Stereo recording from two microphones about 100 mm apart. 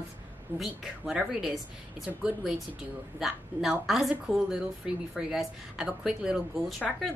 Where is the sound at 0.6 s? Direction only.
5° right (ahead or behind).